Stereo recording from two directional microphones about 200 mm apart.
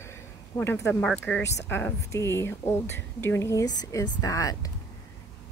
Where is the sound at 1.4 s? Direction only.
60° left (ahead or behind).